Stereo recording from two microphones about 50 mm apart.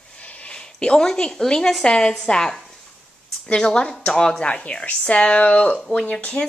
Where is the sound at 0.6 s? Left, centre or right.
Centre.